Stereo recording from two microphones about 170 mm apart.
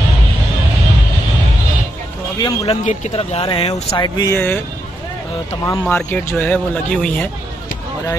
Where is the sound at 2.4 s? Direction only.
35° left (ahead or behind); by 4.6 s 15° left (ahead or behind).